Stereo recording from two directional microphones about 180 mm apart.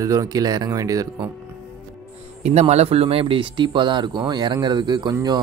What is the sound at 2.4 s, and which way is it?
Speech, 35° right (ahead or behind).